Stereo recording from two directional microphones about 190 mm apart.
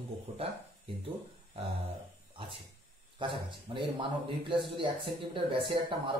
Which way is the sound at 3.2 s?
25° right (ahead or behind).